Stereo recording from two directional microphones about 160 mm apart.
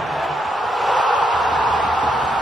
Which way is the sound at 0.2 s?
Centre (ahead or behind).